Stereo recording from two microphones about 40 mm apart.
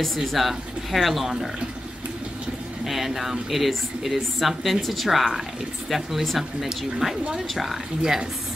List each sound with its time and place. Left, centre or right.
0.0 s speech: centre
2.8 s speech: centre
8.0 s speech: centre